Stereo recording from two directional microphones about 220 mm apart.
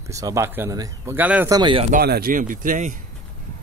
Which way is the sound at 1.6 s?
25° right (ahead or behind).